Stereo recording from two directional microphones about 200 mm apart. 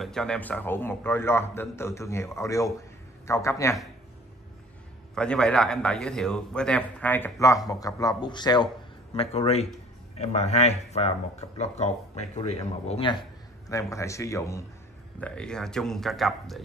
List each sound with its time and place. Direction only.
0.0 s a man's voice: 5° left (ahead or behind)
5.1 s a man's voice: 5° left (ahead or behind); by 13.2 s 30° left (ahead or behind)
13.7 s a man's voice: 15° left (ahead or behind); by 16.6 s centre (ahead or behind)